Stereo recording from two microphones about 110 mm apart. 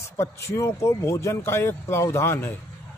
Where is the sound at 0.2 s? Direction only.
25° left (ahead or behind).